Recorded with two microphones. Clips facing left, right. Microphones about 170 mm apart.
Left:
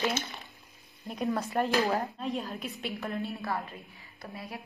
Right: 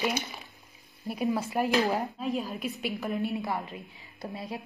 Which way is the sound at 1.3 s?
5° right (ahead or behind).